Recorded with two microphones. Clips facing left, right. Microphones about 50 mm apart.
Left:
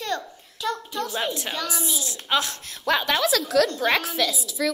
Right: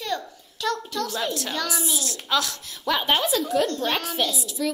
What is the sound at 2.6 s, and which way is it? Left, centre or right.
Speech, left.